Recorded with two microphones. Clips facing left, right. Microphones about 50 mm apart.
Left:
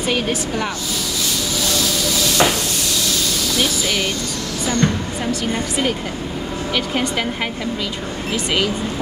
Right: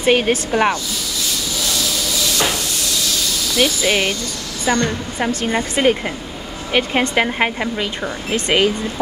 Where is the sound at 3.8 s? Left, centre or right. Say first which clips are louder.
Right 4 dB; right.